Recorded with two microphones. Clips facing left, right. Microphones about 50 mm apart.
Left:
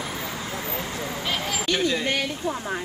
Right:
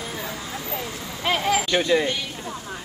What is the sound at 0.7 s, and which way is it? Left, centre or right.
Vehicle, left.